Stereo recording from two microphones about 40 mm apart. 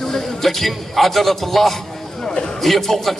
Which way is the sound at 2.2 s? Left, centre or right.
Centre.